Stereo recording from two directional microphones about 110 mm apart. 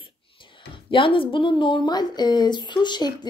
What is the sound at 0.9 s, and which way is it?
A woman's voice, 50° left (ahead or behind).